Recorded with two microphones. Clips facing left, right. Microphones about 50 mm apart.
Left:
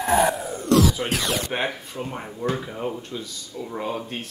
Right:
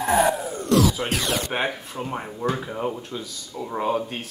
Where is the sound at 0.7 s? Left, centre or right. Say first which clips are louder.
Left 1 dB; centre.